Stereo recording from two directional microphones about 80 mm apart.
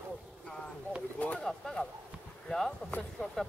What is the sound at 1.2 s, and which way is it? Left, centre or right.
Speech, centre.